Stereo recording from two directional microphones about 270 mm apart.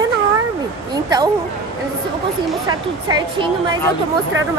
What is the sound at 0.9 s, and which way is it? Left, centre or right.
Speech, centre.